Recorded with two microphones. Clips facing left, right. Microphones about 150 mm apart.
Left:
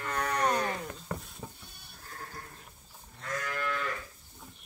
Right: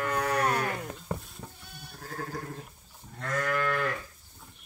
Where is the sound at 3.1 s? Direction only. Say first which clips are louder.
Right 6 dB; 85° right.